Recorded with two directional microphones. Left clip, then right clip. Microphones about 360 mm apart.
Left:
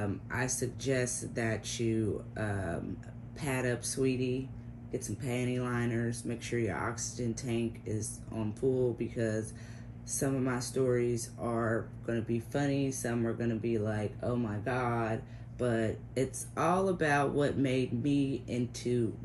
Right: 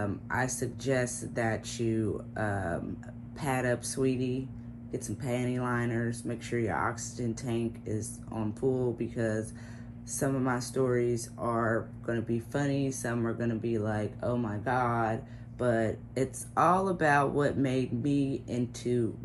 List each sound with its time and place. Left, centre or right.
0.0 s speech: centre